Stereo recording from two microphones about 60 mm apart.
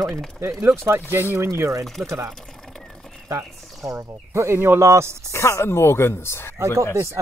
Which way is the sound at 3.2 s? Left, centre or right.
Right.